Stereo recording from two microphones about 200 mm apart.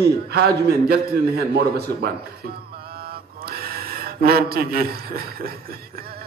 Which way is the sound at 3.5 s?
50° right (ahead or behind).